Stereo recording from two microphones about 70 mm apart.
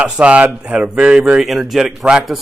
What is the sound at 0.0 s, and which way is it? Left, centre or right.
Speech, centre.